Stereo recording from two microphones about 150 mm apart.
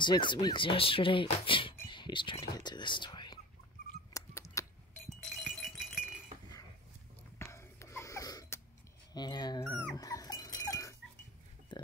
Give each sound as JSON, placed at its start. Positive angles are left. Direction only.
{"t": 0.0, "sound": "speech", "side_deg": 30}
{"t": 4.1, "sound": "a sound", "side_deg": 20}
{"t": 5.2, "sound": "music", "side_deg": 0}
{"t": 7.3, "sound": "a sound", "side_deg": 20}
{"t": 9.1, "sound": "speech", "side_deg": 30}
{"t": 9.7, "sound": "speech", "side_deg": 10}
{"t": 9.9, "sound": "dog", "side_deg": 25}
{"t": 11.7, "sound": "pig", "side_deg": 30}